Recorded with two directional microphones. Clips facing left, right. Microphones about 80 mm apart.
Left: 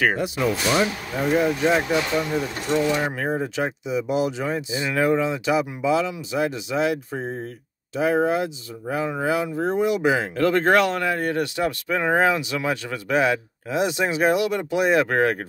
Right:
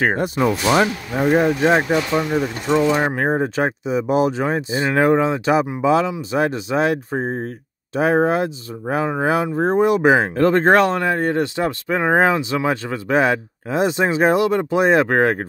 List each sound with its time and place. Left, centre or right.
0.0 s speech: right